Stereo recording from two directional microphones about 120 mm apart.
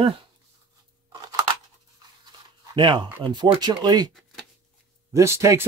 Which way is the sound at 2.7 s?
40° right (ahead or behind).